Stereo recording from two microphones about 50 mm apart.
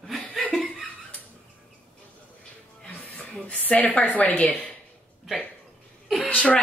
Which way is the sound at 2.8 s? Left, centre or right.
Centre.